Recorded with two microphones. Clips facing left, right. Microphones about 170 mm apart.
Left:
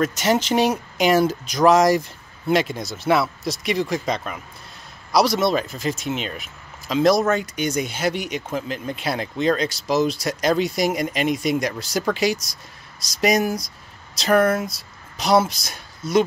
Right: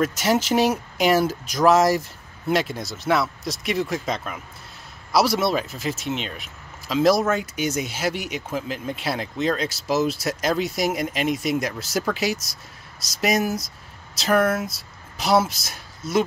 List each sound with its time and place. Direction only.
0.0 s speech: 5° right (ahead or behind)